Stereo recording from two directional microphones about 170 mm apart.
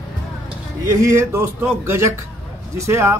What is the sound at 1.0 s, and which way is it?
Speech, 15° right (ahead or behind).